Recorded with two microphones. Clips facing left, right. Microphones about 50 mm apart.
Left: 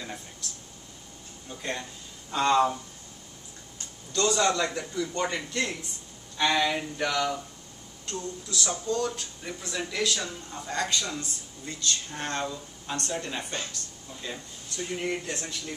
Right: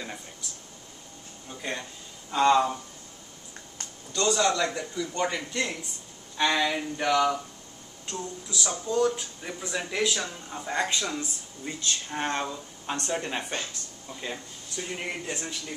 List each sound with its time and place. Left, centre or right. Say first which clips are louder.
0.4 s a sound: left 1 dB; centre
1.6 s a man's voice: even; centre
4.1 s a man's voice: even; centre